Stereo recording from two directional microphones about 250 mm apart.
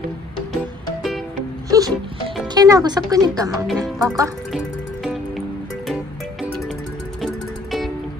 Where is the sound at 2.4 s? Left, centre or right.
Centre.